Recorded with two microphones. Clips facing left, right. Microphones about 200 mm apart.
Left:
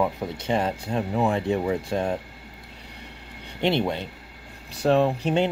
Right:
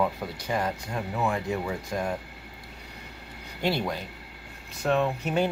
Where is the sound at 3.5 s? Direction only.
20° left (ahead or behind).